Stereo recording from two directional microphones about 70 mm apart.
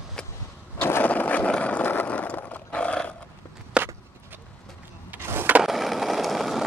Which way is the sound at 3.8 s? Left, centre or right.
Centre.